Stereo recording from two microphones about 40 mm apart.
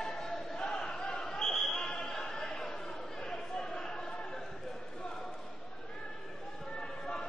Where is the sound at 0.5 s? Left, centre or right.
Left.